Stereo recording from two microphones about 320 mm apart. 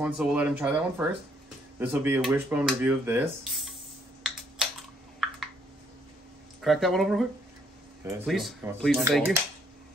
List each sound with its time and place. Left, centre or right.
0.0 s speech: centre
4.2 s computer keyboard: centre
6.6 s speech: centre